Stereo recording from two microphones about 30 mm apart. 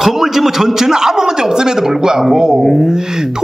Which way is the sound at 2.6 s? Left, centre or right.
Centre.